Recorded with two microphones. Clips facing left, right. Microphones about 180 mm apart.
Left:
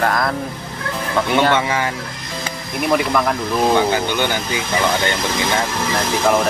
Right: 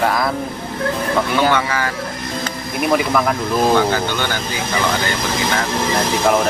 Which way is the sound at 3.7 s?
15° left (ahead or behind).